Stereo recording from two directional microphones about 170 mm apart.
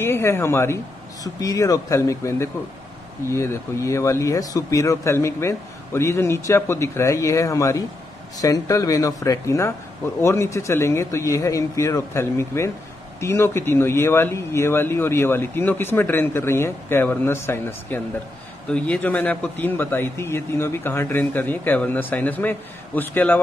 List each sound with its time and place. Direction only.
0.0 s speech: 15° left (ahead or behind)